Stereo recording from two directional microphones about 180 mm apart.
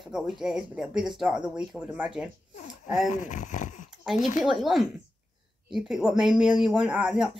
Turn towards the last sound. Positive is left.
turn(degrees=-5)  # may be behind; listen again after turning